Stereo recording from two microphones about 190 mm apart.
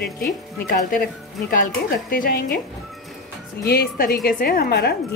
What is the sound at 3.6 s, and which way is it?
A woman's voice, 50° left (ahead or behind).